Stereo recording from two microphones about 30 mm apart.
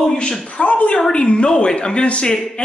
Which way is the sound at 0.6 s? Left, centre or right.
Left.